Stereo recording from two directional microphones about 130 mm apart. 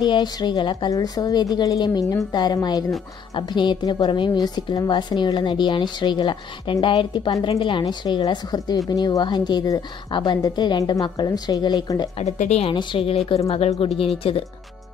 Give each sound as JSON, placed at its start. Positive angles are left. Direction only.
{"t": 0.0, "sound": "a woman's voice", "side_deg": 35}
{"t": 12.2, "sound": "speech", "side_deg": 55}
{"t": 12.7, "sound": "a woman's voice", "side_deg": 45}